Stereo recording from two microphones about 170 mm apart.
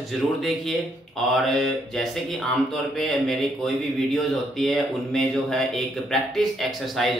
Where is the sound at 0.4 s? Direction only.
Centre (ahead or behind).